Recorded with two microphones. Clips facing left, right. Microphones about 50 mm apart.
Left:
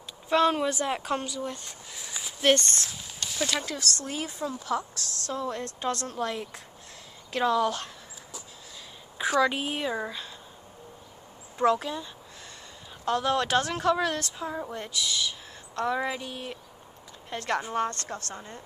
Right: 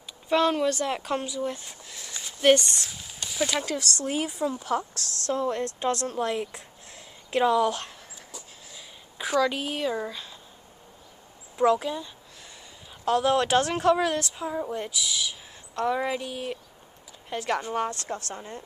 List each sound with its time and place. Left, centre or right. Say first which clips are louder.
0.3 s speech: right 1 dB; centre
2.0 s a sound: left 1 dB; centre
2.4 s speech: right 3 dB; centre
3.9 s speech: right 5 dB; right; by 7.8 s centre
9.4 s speech: right 1 dB; centre
11.5 s speech: right 2 dB; centre
13.4 s speech: right 3 dB; centre
13.9 s speech: right 2 dB; centre